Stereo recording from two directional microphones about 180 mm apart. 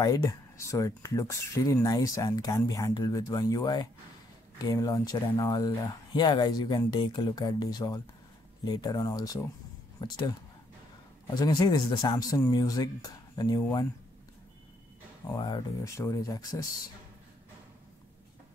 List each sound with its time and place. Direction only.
0.0 s speech: 20° left (ahead or behind)
11.3 s speech: 20° left (ahead or behind)
15.3 s speech: 25° left (ahead or behind)